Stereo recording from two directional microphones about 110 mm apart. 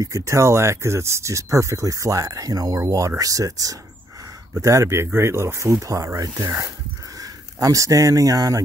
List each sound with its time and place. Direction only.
0.0 s speech: 30° right (ahead or behind)
4.6 s speech: 30° right (ahead or behind)